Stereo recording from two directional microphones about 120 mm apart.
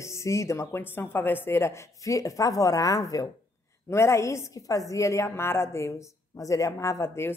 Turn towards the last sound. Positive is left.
turn(degrees=20)  # may be behind; listen again after turning